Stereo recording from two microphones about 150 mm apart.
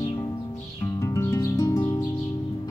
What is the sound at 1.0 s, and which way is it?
Music, 20° left (ahead or behind).